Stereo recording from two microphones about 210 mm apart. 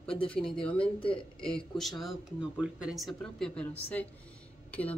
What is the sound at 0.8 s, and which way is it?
Speech, 25° left (ahead or behind).